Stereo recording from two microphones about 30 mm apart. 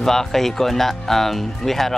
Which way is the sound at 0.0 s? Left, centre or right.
Centre.